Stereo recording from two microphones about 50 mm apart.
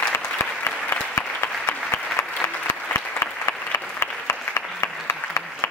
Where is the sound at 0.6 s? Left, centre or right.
Left.